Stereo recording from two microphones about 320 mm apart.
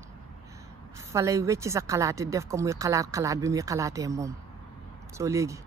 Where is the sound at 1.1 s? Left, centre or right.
Centre.